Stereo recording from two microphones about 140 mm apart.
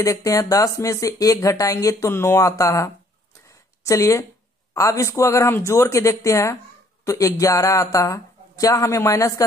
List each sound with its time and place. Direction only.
0.0 s speech: 25° left (ahead or behind)
3.4 s a sound: 20° left (ahead or behind)
4.7 s speech: 25° left (ahead or behind)